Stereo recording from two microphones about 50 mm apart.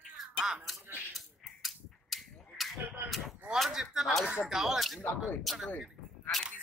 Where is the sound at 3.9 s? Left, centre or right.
Centre.